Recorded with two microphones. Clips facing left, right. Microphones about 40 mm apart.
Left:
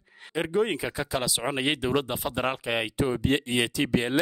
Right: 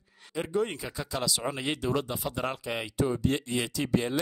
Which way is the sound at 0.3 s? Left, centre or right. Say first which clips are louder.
Left 4 dB; left.